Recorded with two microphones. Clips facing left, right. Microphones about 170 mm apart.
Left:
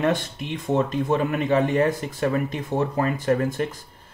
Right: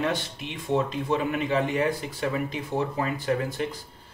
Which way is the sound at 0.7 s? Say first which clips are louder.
Left 3 dB; 45° left (ahead or behind).